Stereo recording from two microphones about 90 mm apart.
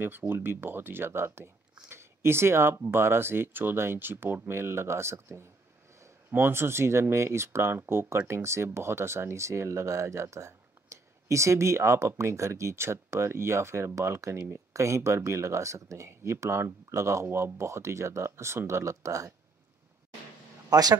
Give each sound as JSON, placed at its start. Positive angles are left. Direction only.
{"t": 0.3, "sound": "speech", "side_deg": -25}
{"t": 20.7, "sound": "speech", "side_deg": -45}